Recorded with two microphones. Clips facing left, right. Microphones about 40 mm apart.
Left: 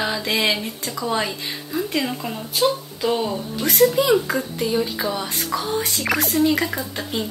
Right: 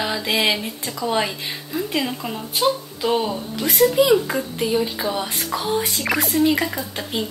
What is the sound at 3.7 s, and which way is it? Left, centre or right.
Speech, centre.